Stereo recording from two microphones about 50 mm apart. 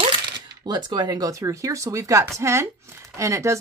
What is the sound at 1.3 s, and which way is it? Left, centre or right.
Speech, right.